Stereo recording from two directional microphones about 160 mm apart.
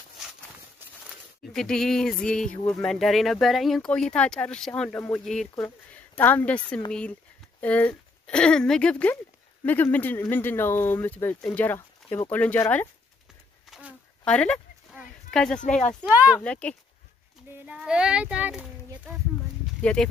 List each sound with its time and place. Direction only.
1.0 s speech: 5° left (ahead or behind)
13.7 s a sound: 10° right (ahead or behind)
14.2 s speech: 5° left (ahead or behind)
15.6 s speech: 50° left (ahead or behind)
16.0 s speech: 10° right (ahead or behind)
16.3 s speech: 10° left (ahead or behind)
17.5 s speech: 10° right (ahead or behind)
19.8 s speech: 5° left (ahead or behind)